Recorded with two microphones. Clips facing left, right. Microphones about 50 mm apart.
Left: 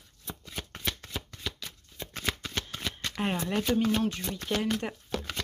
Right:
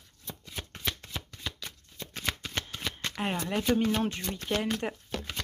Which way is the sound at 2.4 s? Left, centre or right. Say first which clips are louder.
Even; centre.